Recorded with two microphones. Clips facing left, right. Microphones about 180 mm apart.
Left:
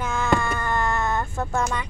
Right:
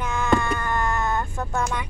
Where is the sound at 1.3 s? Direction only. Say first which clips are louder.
Left 1 dB; 5° left (ahead or behind).